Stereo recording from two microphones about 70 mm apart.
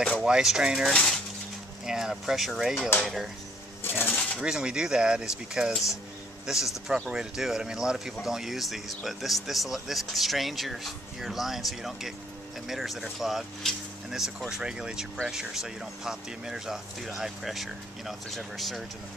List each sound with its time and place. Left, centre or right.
0.2 s speech: centre
0.9 s speech: centre
1.9 s speech: centre
3.8 s a sound: left
4.4 s speech: centre